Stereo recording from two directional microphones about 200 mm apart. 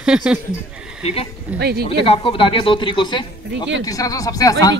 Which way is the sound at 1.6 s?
55° right (ahead or behind).